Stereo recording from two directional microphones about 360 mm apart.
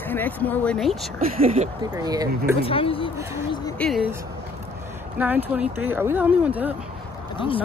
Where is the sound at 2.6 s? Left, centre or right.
Centre.